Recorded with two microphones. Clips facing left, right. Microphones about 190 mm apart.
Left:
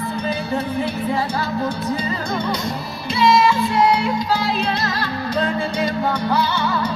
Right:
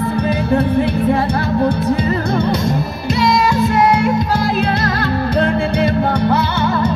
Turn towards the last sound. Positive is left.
turn(degrees=-55)  # may be behind; listen again after turning